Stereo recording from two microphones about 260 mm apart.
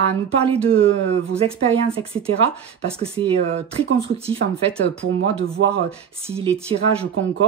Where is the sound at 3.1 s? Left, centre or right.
Right.